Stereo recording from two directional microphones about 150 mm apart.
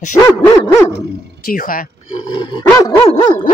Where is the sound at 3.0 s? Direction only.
50° left (ahead or behind).